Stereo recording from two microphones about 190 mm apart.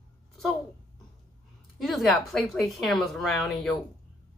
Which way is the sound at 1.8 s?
Centre (ahead or behind).